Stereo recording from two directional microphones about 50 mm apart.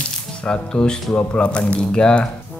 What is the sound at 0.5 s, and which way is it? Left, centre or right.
Speech, left.